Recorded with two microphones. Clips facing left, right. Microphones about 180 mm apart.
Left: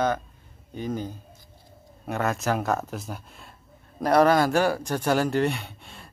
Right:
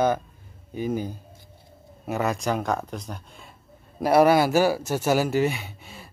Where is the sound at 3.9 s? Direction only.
10° right (ahead or behind).